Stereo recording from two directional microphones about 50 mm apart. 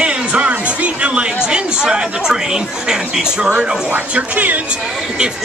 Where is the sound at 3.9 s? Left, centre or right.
Right.